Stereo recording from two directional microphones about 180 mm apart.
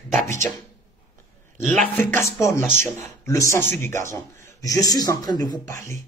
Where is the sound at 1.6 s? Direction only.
5° left (ahead or behind).